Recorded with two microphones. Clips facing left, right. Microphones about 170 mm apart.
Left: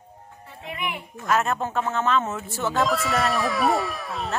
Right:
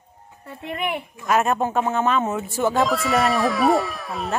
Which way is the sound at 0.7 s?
55° right (ahead or behind).